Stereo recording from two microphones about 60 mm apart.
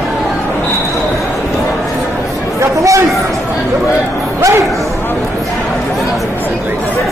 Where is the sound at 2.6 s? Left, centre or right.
Right.